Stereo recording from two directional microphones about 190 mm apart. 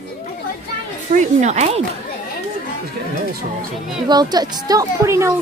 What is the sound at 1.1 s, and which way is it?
Speech, 35° right (ahead or behind).